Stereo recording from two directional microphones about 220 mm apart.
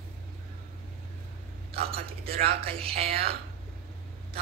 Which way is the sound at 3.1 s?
45° right (ahead or behind).